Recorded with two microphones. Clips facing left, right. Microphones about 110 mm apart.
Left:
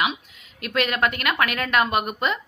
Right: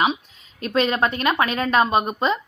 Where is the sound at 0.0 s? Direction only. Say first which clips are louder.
Right 4 dB; 35° right (ahead or behind).